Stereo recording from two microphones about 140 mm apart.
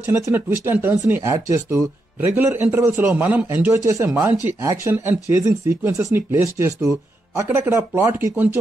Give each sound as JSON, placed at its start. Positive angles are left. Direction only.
{"t": 0.0, "sound": "speech", "side_deg": -20}